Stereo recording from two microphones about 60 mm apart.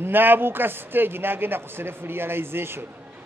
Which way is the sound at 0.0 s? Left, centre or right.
Right.